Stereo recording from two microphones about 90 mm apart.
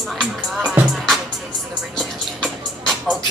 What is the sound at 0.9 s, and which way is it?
Music, centre (ahead or behind).